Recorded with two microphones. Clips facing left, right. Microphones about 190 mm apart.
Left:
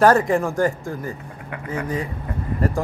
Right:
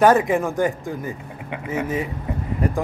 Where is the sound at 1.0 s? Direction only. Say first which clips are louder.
Right 1 dB; 20° right (ahead or behind).